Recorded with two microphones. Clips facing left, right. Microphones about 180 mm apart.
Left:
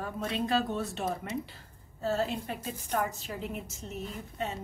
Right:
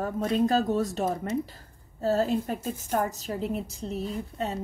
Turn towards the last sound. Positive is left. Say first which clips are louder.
# right 5 dB
turn(degrees=-35)  # may be behind; listen again after turning